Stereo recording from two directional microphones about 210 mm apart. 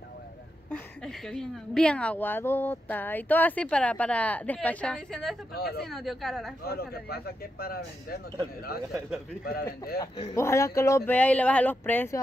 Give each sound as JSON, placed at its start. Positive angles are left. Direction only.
{"t": 0.7, "sound": "a woman's voice", "side_deg": 0}
{"t": 5.5, "sound": "speech", "side_deg": 50}
{"t": 5.9, "sound": "speech", "side_deg": 0}
{"t": 6.6, "sound": "speech", "side_deg": 50}
{"t": 9.4, "sound": "speech", "side_deg": 45}
{"t": 10.3, "sound": "a woman's voice", "side_deg": 15}